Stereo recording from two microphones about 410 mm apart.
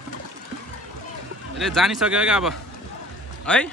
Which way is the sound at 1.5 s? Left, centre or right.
Centre.